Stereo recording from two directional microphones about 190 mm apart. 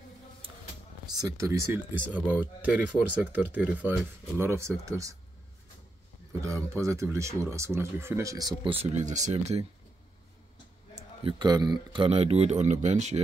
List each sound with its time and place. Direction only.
1.1 s speech: 20° right (ahead or behind)
6.4 s speech: 15° right (ahead or behind); by 9.7 s 35° right (ahead or behind)
11.0 s speech: 25° right (ahead or behind)